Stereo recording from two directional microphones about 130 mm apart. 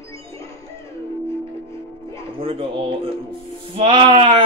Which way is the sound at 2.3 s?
45° right (ahead or behind).